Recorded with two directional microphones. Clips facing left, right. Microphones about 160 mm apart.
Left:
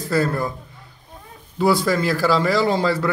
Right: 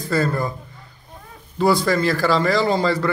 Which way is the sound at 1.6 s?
5° left (ahead or behind).